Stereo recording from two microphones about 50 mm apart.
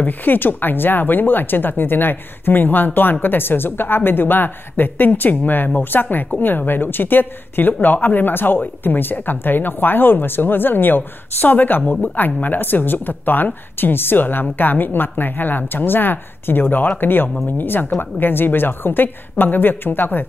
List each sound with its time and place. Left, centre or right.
0.0 s speech: left